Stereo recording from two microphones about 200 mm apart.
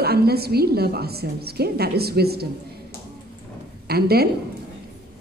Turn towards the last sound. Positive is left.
turn(degrees=-50)  # may be behind; listen again after turning